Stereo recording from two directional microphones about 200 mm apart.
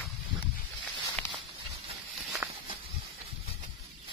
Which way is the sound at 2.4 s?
10° right (ahead or behind).